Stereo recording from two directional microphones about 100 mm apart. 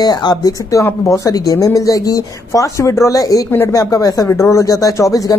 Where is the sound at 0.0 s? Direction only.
45° left (ahead or behind).